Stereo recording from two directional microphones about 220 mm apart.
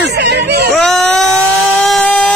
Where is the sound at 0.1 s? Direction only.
50° right (ahead or behind).